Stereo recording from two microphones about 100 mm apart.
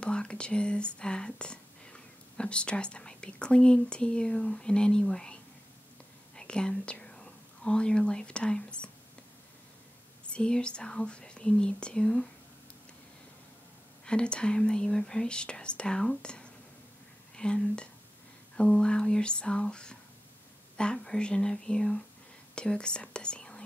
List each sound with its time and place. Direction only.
0.0 s speech: 10° left (ahead or behind)
10.2 s speech: 10° left (ahead or behind)
14.0 s speech: 10° left (ahead or behind)